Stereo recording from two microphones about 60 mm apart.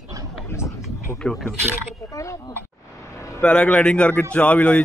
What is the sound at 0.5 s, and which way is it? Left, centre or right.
Speech, left.